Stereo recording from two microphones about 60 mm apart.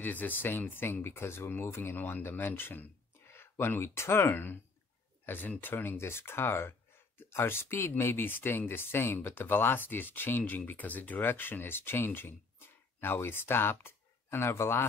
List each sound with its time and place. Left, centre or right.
0.0 s speech: left